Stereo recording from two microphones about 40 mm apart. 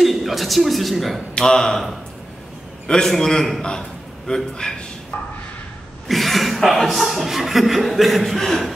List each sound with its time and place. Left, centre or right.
0.0 s speech: centre
1.3 s a man's voice: centre
2.9 s a man's voice: centre
6.0 s speech: centre